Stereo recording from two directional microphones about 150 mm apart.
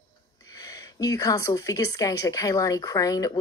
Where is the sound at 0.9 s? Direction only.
25° left (ahead or behind).